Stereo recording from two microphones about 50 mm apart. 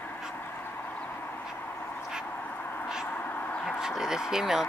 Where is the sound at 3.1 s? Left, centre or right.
Left.